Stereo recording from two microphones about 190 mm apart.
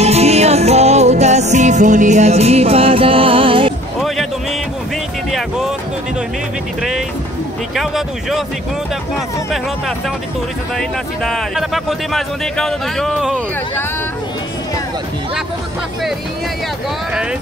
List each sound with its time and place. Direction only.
0.0 s music: 35° right (ahead or behind)
7.7 s speech: centre (ahead or behind)
9.5 s speech: centre (ahead or behind)